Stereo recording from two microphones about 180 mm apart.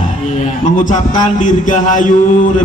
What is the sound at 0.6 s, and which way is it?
A man's voice, 45° left (ahead or behind).